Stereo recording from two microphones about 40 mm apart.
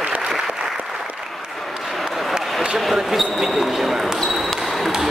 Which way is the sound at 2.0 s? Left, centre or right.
Centre.